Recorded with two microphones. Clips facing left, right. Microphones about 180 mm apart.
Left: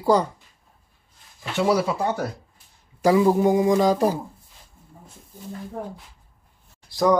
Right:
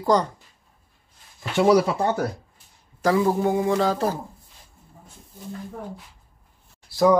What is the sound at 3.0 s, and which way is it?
Speech, 10° left (ahead or behind).